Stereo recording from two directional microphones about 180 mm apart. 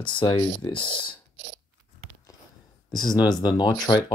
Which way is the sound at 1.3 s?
90° right.